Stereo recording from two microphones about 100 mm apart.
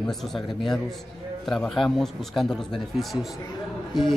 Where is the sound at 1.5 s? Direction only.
5° left (ahead or behind).